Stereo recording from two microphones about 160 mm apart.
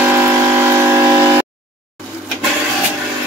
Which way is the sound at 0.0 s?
10° right (ahead or behind).